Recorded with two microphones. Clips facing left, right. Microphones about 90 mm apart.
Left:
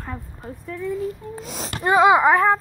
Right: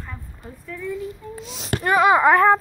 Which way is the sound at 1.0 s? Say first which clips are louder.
Left 3 dB; 45° left (ahead or behind).